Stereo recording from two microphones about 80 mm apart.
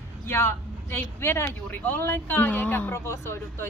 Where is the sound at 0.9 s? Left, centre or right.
Left.